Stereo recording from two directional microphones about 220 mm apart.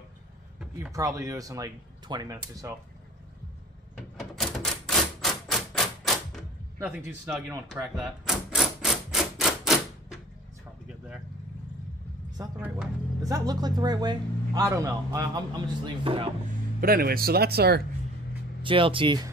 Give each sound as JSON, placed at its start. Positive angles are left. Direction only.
{"t": 0.6, "sound": "a sound", "side_deg": -5}
{"t": 0.9, "sound": "speech", "side_deg": -15}
{"t": 3.9, "sound": "typewriter", "side_deg": 0}
{"t": 7.2, "sound": "speech", "side_deg": 0}
{"t": 7.9, "sound": "typewriter", "side_deg": 0}
{"t": 12.5, "sound": "speech", "side_deg": -5}
{"t": 13.2, "sound": "speech", "side_deg": -15}
{"t": 16.8, "sound": "speech", "side_deg": -40}
{"t": 18.6, "sound": "speech", "side_deg": -25}